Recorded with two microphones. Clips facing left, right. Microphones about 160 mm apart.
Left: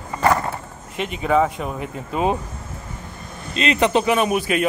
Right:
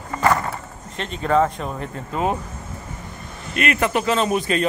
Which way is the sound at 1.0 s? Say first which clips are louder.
Even; 10° left (ahead or behind).